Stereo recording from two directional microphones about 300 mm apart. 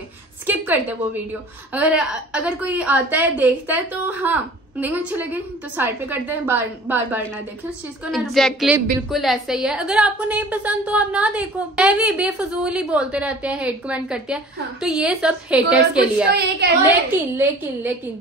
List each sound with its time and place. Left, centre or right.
0.5 s a sound: centre
1.7 s a woman's voice: centre
16.3 s a woman's voice: right
17.1 s a woman's voice: centre